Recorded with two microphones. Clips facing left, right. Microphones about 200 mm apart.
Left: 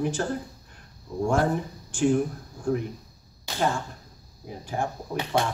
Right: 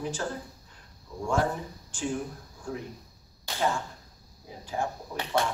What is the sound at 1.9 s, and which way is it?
Speech, 50° left (ahead or behind).